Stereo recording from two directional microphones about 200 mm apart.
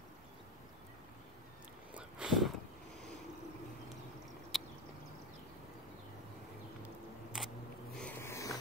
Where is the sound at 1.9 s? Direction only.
5° right (ahead or behind).